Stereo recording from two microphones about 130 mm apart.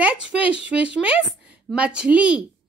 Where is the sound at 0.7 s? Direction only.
10° right (ahead or behind).